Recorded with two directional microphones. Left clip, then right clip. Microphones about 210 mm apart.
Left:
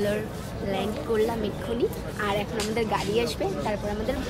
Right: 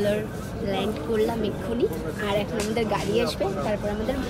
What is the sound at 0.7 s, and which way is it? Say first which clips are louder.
A woman's voice: right 1 dB; centre (ahead or behind).